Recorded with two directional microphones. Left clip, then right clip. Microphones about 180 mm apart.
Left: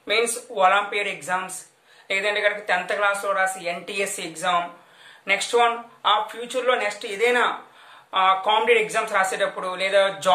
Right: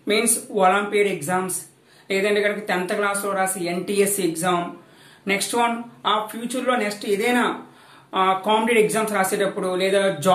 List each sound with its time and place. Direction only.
0.0 s speech: 10° left (ahead or behind)